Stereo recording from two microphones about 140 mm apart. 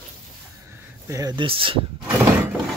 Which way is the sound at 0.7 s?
20° right (ahead or behind).